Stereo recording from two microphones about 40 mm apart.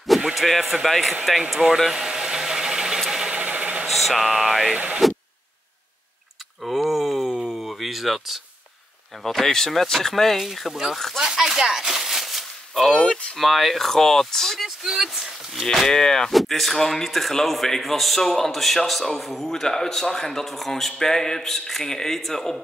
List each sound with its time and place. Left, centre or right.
0.3 s a man's voice: centre
1.5 s speech: centre
1.9 s vehicle: centre
3.3 s a sound: right
3.8 s a man's voice: centre
6.6 s a sound: centre
9.2 s a man's voice: centre
11.1 s a sound: centre
12.9 s a man's voice: centre
13.4 s a man's voice: centre
14.8 s speech: centre
15.6 s a man's voice: centre
19.5 s a man's voice: centre